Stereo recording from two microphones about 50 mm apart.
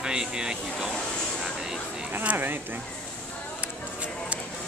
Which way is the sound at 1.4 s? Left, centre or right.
Centre.